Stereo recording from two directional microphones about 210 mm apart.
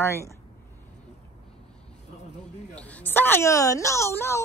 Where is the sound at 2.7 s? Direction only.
5° left (ahead or behind).